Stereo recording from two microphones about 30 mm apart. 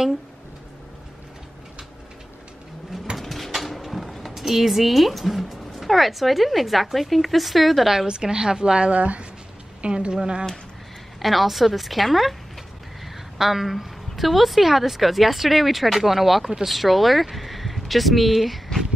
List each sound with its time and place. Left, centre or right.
3.2 s a sound: centre
4.4 s speech: centre
8.1 s a woman's voice: right
8.9 s speech: right
9.8 s a woman's voice: right
11.1 s a woman's voice: centre